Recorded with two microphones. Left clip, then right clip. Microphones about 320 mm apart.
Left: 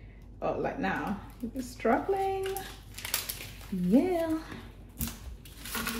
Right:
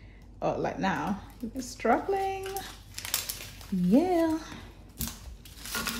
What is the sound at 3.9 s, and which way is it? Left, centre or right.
Speech, right.